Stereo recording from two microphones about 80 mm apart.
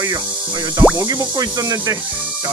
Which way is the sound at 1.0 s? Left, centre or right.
Right.